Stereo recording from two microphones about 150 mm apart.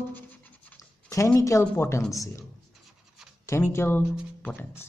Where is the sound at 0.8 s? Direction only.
20° left (ahead or behind).